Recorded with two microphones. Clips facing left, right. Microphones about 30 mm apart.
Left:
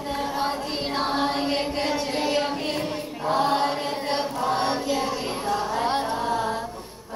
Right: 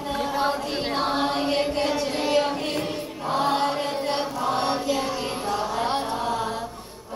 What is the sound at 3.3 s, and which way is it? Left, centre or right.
Choir, centre.